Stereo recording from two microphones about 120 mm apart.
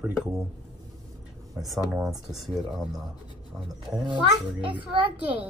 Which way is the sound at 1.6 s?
5° right (ahead or behind).